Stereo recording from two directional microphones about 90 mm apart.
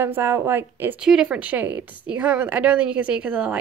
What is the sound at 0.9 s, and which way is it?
A woman's voice, 10° right (ahead or behind).